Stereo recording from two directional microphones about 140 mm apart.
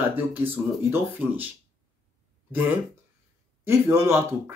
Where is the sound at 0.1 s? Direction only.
15° right (ahead or behind).